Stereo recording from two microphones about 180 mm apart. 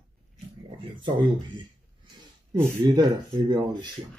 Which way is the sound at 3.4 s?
25° right (ahead or behind).